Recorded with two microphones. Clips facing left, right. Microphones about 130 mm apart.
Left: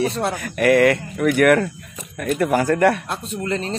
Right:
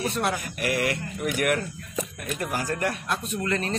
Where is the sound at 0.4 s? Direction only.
65° left (ahead or behind).